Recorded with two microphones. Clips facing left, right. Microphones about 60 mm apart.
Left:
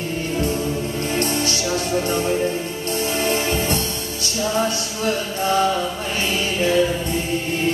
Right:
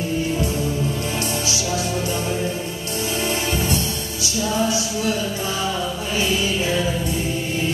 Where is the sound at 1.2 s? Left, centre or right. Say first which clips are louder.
Left 3 dB; left.